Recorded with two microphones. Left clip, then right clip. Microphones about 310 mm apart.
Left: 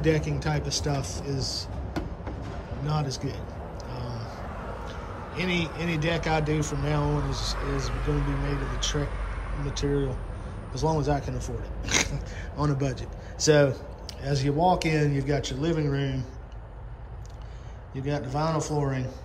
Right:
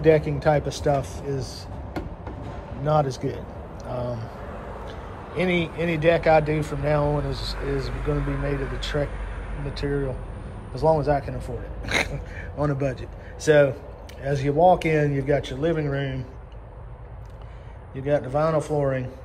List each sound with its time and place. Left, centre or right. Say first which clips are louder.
0.0 s a man's voice: right 8 dB; centre
2.8 s a man's voice: right 10 dB; centre
4.8 s a sound: right 1 dB; centre
5.8 s a man's voice: right 8 dB; centre
10.7 s a man's voice: right 7 dB; centre
11.1 s a man's voice: right 5 dB; centre
17.9 s a man's voice: right 7 dB; centre